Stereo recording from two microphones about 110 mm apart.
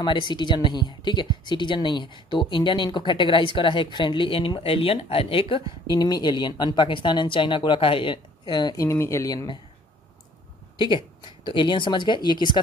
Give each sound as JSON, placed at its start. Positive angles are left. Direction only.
{"t": 0.0, "sound": "speech", "side_deg": 45}
{"t": 5.9, "sound": "speech", "side_deg": 35}
{"t": 8.7, "sound": "speech", "side_deg": 25}
{"t": 10.8, "sound": "speech", "side_deg": 45}